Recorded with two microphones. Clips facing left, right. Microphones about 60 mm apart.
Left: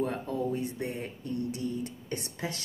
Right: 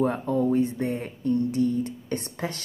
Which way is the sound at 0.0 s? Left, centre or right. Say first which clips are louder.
Right 7 dB; right.